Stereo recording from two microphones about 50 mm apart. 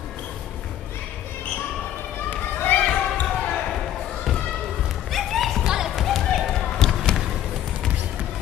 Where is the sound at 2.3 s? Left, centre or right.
Left.